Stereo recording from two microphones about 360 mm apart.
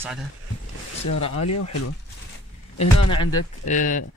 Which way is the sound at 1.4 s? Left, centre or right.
Left.